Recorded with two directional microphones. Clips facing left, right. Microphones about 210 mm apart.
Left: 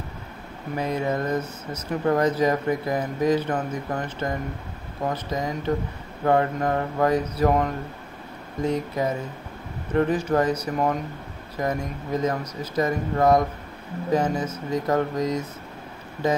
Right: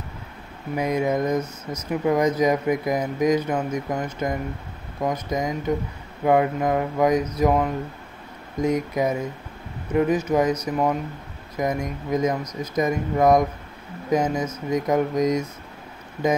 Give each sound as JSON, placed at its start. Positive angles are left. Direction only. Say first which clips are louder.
{"t": 0.7, "sound": "speech", "louder": "right 3 dB", "side_deg": -15}
{"t": 1.4, "sound": "speech", "louder": "right 2 dB", "side_deg": 10}
{"t": 1.9, "sound": "speech", "louder": "right 1 dB", "side_deg": -10}
{"t": 11.5, "sound": "speech", "louder": "right 2 dB", "side_deg": -10}